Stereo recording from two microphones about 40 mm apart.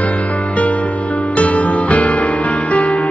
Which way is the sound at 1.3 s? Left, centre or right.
Left.